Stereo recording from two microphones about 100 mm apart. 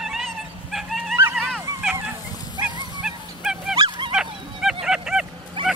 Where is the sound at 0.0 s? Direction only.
Centre (ahead or behind).